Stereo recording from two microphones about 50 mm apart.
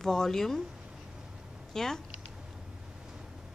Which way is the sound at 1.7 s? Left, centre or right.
Centre.